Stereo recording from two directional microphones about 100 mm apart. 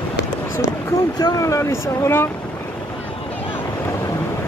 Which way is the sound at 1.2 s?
30° left (ahead or behind).